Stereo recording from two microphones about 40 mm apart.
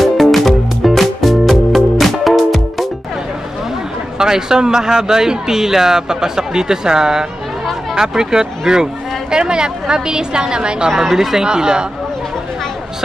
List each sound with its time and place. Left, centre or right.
0.0 s music: centre
4.2 s a woman's voice: centre
11.1 s speech: centre